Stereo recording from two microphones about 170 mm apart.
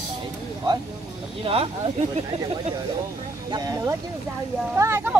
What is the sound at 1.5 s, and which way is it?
Speech, 30° right (ahead or behind).